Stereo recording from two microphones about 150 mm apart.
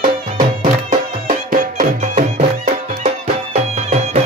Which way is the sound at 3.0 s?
45° right (ahead or behind).